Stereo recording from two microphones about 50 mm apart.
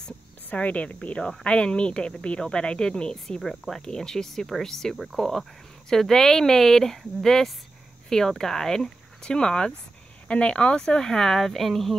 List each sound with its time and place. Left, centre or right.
0.5 s speech: left; by 11.9 s centre